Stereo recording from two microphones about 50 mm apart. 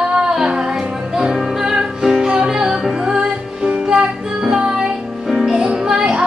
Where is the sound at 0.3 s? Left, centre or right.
Centre.